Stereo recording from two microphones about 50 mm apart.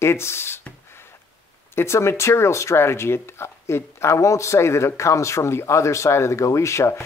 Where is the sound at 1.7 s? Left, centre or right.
Left.